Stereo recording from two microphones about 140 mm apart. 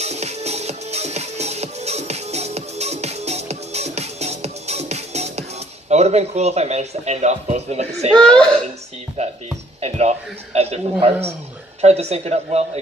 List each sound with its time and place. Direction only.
0.0 s music: 50° right (ahead or behind)
5.9 s speech: 50° right (ahead or behind)
8.1 s speech: 5° left (ahead or behind)
9.2 s speech: 50° right (ahead or behind)